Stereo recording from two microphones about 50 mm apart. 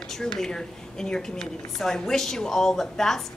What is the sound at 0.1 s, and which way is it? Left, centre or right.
A woman's voice, centre.